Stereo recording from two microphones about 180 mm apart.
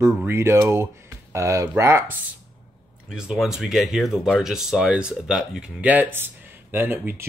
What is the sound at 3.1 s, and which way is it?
Speech, 5° right (ahead or behind).